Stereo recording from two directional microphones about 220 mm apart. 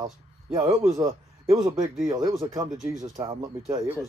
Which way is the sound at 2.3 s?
25° right (ahead or behind).